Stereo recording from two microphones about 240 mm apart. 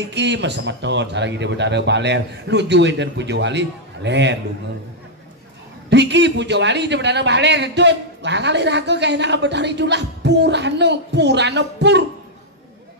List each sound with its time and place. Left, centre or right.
0.1 s a man's voice: right
5.9 s a man's voice: right